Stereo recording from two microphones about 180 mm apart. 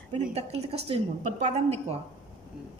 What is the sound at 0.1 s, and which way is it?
A woman's voice, 35° right (ahead or behind).